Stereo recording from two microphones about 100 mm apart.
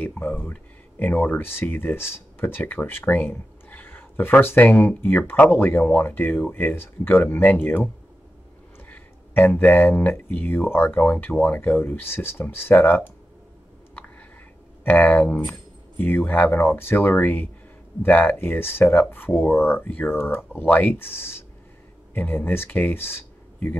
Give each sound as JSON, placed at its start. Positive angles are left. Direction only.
{"t": 0.0, "sound": "speech", "side_deg": 20}
{"t": 14.9, "sound": "speech", "side_deg": 15}